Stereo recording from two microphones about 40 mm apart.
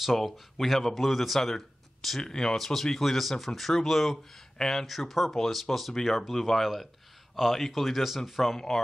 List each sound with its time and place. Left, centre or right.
0.2 s speech: centre
1.5 s a sound: centre
2.2 s speech: centre
2.5 s speech: centre